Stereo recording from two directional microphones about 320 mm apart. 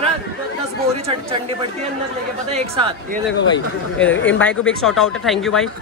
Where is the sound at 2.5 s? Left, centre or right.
Centre.